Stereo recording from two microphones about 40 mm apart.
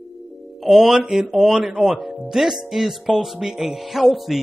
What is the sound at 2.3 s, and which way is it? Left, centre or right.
A man's voice, centre.